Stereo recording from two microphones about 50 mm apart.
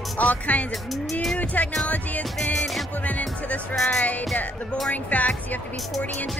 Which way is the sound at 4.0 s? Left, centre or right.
Left.